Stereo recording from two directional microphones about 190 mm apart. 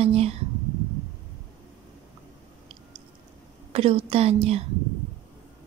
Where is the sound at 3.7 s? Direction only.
30° right (ahead or behind).